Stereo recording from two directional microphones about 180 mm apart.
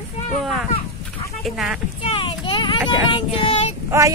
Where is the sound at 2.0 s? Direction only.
30° left (ahead or behind).